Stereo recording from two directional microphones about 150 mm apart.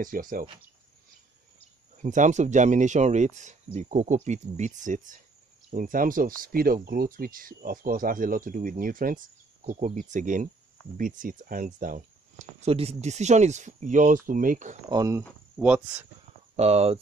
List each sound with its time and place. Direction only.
0.0 s speech: 65° right (ahead or behind)
2.0 s speech: 55° right (ahead or behind)
14.9 s speech: 25° right (ahead or behind)
15.5 s speech: 10° right (ahead or behind)
16.5 s speech: 45° right (ahead or behind)